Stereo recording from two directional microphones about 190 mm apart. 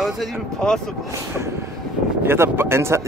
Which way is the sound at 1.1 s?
15° right (ahead or behind).